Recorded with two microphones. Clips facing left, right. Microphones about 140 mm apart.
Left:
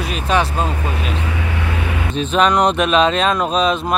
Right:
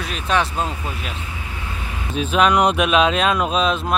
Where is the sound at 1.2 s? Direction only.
75° left (ahead or behind).